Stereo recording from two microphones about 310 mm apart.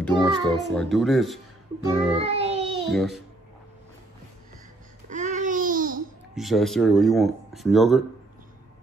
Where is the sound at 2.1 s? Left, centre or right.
Centre.